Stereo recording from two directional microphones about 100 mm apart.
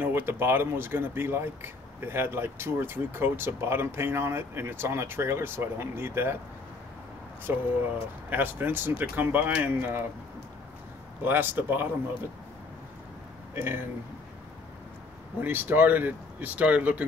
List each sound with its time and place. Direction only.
0.0 s speech: 20° right (ahead or behind)
7.5 s speech: 20° right (ahead or behind)
11.2 s speech: 20° right (ahead or behind)
13.6 s speech: 20° right (ahead or behind)
15.4 s speech: 20° right (ahead or behind)